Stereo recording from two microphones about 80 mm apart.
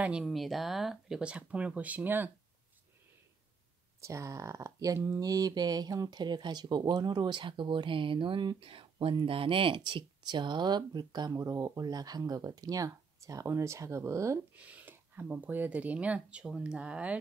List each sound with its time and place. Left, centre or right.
0.2 s speech: centre; by 2.3 s right
4.0 s speech: right
5.2 s speech: right
9.2 s speech: right
11.3 s speech: right
14.5 s speech: centre